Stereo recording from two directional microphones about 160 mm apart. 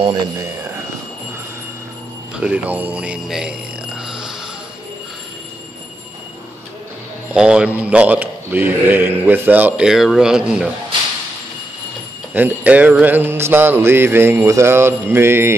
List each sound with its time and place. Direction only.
0.0 s speech: 25° right (ahead or behind)
2.3 s speech: 10° right (ahead or behind)
7.3 s a man's voice: 5° right (ahead or behind)
12.4 s a man's voice: 10° right (ahead or behind)